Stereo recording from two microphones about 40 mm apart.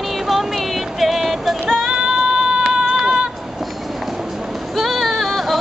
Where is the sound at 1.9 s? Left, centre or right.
Centre.